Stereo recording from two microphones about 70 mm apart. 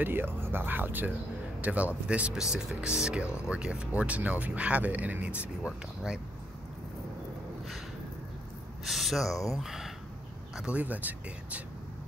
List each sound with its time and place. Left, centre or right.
0.0 s speech: right
5.7 s speech: centre
8.8 s speech: centre
10.8 s speech: right